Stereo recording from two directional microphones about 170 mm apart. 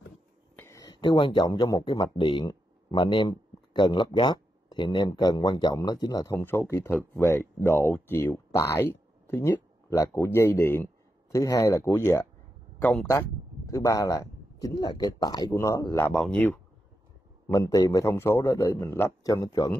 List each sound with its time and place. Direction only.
0.6 s a man's voice: 20° left (ahead or behind)
16.1 s a man's voice: 5° left (ahead or behind)
17.5 s a man's voice: 20° left (ahead or behind)